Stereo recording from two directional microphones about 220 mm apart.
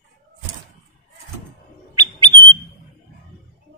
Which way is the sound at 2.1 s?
20° right (ahead or behind).